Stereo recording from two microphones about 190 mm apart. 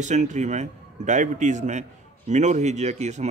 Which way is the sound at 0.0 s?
40° right (ahead or behind).